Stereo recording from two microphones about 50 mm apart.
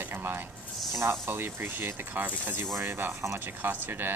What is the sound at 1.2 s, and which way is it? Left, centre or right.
Speech, right.